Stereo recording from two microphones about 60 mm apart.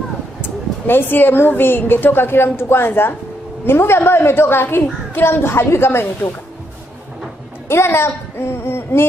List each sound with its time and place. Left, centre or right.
0.4 s a woman's voice: left
7.6 s speech: left